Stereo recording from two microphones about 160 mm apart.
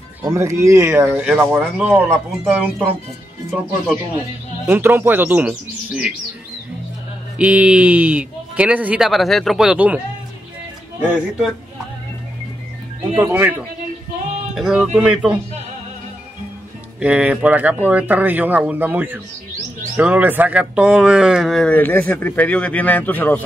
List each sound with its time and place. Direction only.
0.2 s speech: 20° right (ahead or behind)
4.6 s speech: 15° right (ahead or behind)
7.3 s speech: 10° right (ahead or behind)
13.0 s speech: 20° right (ahead or behind)
13.3 s speech: 10° right (ahead or behind)
17.0 s speech: 10° right (ahead or behind); by 23.4 s 10° left (ahead or behind)